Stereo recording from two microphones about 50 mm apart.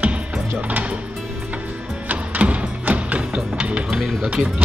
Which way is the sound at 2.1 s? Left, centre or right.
Right.